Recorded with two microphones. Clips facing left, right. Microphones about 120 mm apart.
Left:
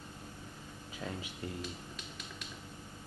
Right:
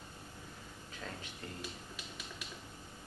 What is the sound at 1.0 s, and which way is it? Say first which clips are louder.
Speech: left 5 dB; 10° left (ahead or behind).